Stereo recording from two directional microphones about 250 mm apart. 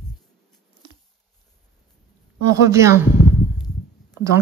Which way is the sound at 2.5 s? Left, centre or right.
Centre.